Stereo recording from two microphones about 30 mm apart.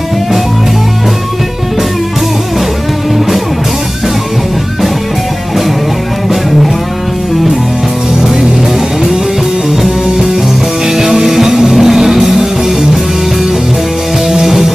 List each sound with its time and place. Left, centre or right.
10.9 s music: centre
14.3 s music: centre